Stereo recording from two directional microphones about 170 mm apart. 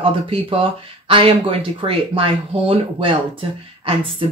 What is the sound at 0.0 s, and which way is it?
Speech, 30° right (ahead or behind).